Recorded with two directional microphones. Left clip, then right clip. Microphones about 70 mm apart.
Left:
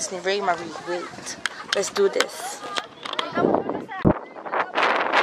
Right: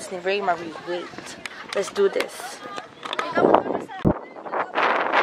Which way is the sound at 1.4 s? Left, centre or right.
Right.